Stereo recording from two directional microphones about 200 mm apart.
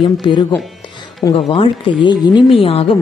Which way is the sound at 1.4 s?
25° left (ahead or behind).